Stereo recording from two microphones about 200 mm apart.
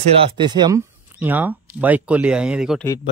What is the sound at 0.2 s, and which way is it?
Speech, 20° right (ahead or behind).